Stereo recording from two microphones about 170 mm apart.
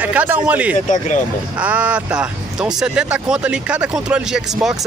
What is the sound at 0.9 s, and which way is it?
Speech, 45° left (ahead or behind).